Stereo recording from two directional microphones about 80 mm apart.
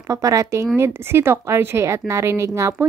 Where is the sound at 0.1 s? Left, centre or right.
Right.